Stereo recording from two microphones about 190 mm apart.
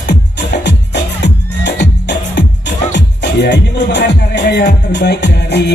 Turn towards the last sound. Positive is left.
turn(degrees=60)  # may be behind; listen again after turning